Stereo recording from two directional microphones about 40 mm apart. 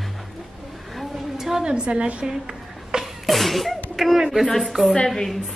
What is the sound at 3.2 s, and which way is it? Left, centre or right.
Sneeze, centre.